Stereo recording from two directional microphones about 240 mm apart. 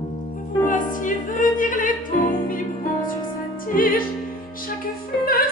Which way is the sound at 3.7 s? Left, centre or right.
Left.